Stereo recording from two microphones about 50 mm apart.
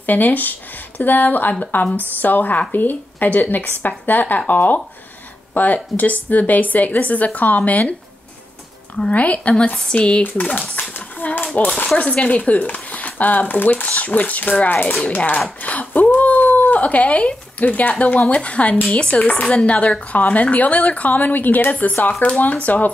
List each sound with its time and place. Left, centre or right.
0.0 s speech: left
9.0 s speech: left
10.8 s a sound: left
12.0 s speech: left
15.6 s a sound: left
17.9 s speech: left